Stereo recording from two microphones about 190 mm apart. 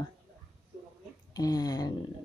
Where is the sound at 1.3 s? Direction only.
20° left (ahead or behind).